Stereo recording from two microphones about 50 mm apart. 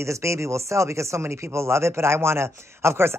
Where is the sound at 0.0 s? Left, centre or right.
Right.